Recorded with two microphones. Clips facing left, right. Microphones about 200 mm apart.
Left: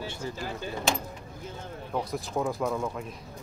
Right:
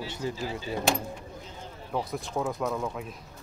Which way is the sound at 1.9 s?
Centre (ahead or behind).